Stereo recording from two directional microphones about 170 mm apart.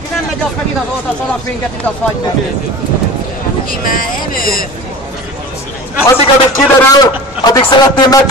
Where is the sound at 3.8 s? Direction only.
55° left (ahead or behind).